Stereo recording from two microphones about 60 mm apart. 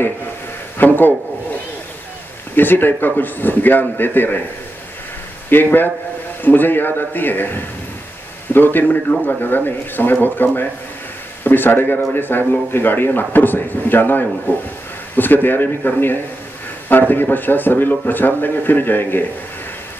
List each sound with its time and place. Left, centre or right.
0.7 s speech: left
2.5 s speech: left
5.5 s speech: left
17.1 s speech: left